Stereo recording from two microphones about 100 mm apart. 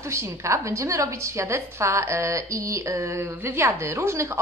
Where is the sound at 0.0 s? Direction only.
30° right (ahead or behind).